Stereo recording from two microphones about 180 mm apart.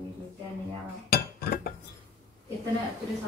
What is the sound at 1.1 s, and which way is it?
Chink, 55° left (ahead or behind).